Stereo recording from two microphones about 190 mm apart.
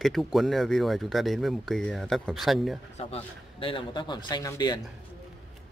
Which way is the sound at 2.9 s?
30° left (ahead or behind).